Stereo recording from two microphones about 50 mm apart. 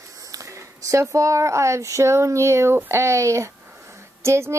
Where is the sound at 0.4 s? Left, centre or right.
Right.